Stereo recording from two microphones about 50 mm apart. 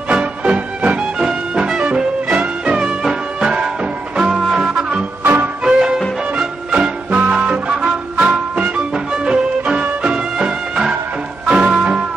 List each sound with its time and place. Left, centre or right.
0.1 s music: right
5.2 s music: right
5.6 s music: centre